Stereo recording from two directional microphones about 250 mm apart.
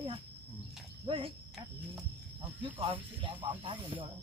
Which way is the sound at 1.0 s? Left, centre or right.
Centre.